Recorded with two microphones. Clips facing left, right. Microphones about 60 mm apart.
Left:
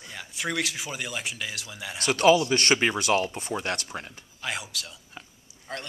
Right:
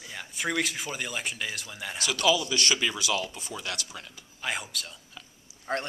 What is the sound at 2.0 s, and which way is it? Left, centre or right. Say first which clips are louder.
A man's voice: left 6 dB; left.